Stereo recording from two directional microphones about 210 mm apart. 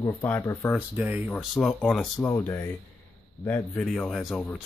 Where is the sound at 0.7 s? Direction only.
5° right (ahead or behind).